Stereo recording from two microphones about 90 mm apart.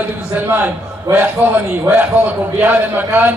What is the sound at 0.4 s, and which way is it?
A man's voice, 20° right (ahead or behind).